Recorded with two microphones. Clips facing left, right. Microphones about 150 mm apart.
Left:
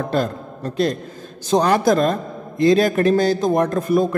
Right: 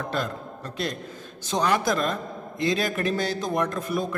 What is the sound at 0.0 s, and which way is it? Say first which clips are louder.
A man's voice: left 8 dB; 40° left (ahead or behind).